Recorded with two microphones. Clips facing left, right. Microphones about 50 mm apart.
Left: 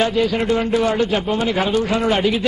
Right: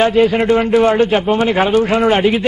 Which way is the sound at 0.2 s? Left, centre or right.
Right.